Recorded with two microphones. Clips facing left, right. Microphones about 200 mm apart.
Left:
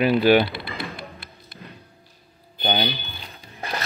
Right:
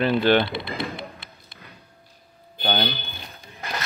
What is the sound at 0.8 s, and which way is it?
Tap, 20° right (ahead or behind).